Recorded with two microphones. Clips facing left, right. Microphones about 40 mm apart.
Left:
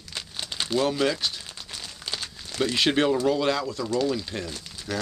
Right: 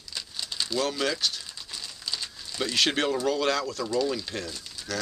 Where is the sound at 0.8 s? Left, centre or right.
Centre.